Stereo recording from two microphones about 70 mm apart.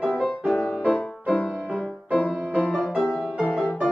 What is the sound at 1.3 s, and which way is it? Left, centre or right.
Music, centre.